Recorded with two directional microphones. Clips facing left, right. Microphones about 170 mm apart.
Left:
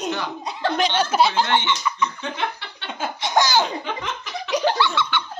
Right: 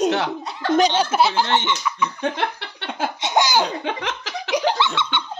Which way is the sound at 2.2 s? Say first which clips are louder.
Right 4 dB; 65° right (ahead or behind).